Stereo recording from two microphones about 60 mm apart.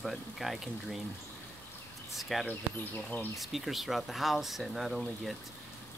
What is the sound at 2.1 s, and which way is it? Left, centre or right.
Speech, centre.